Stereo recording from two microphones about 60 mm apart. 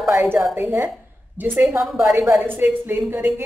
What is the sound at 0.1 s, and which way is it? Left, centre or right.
A woman's voice, right.